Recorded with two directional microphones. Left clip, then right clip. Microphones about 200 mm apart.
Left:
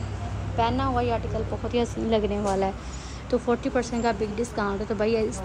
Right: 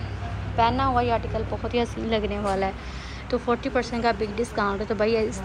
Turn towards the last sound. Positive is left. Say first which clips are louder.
# right 2 dB
turn(degrees=10)  # may be behind; listen again after turning